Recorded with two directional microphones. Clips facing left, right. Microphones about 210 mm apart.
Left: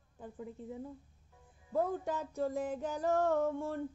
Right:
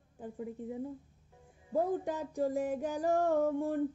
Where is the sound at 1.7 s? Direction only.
35° right (ahead or behind).